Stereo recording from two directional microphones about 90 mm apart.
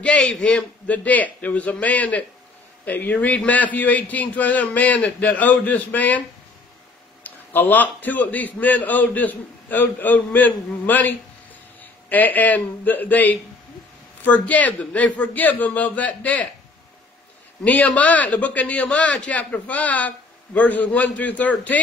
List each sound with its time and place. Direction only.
0.0 s a man's voice: 15° left (ahead or behind)
7.2 s a man's voice: 20° left (ahead or behind)
17.6 s a man's voice: 15° left (ahead or behind)